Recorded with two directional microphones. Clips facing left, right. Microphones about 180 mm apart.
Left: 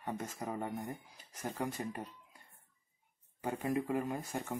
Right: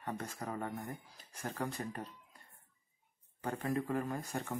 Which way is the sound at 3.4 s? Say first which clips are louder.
Left 1 dB; 15° left (ahead or behind).